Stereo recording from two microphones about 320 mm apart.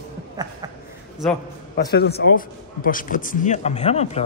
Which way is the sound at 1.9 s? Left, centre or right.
Left.